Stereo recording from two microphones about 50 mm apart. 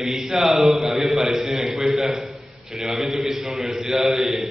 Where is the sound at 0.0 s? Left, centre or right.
Centre.